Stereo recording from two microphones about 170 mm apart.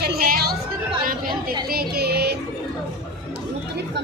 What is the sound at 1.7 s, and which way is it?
Music, 65° right (ahead or behind).